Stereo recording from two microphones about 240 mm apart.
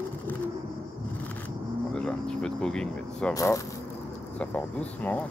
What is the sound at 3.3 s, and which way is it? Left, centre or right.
Speech, centre.